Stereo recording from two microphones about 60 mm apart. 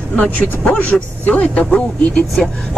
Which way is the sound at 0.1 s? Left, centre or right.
Left.